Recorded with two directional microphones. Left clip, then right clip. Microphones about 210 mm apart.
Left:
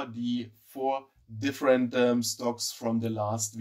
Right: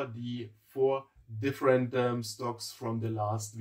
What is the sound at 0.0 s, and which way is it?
Speech, 35° left (ahead or behind).